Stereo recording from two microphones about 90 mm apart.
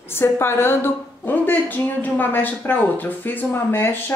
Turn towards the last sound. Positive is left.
turn(degrees=25)  # may be behind; listen again after turning